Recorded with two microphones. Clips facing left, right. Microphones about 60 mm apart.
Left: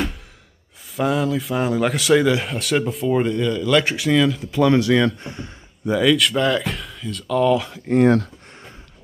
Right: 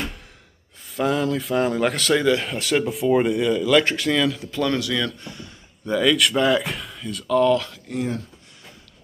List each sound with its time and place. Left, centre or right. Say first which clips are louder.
0.9 s speech: left 1 dB; centre
4.5 s speech: left 6 dB; centre
4.7 s speech: left 8 dB; left
5.9 s speech: left 2 dB; centre
7.9 s speech: left 12 dB; left